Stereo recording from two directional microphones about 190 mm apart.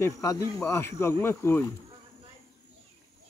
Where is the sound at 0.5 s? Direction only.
10° left (ahead or behind).